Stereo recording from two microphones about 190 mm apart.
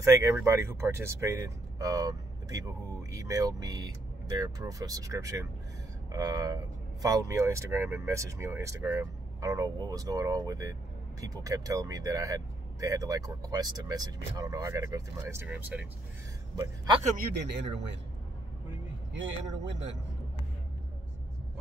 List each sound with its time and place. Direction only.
0.0 s speech: 15° right (ahead or behind)
16.5 s a man's voice: 20° right (ahead or behind)
17.2 s speech: 60° right (ahead or behind)
19.1 s a man's voice: 75° right (ahead or behind)